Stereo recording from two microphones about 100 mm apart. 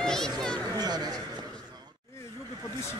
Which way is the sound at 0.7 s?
40° right (ahead or behind).